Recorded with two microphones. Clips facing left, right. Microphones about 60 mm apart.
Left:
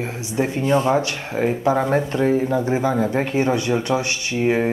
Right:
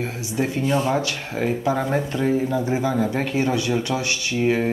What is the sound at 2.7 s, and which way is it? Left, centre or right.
Speech, left.